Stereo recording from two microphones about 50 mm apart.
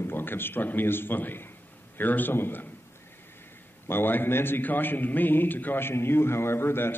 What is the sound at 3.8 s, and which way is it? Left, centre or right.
A man's voice, left.